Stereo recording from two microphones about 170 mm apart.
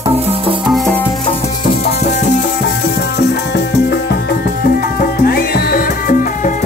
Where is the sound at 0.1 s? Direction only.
35° right (ahead or behind).